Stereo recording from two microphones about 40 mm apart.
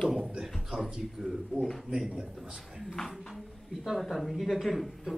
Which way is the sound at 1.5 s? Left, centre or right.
Right.